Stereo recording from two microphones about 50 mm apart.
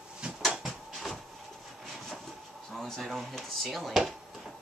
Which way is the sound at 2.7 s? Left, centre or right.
Centre.